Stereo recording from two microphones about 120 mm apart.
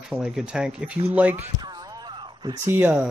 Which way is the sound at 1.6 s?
35° right (ahead or behind).